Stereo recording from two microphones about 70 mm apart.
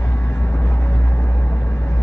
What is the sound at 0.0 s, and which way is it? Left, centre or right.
Vehicle, left.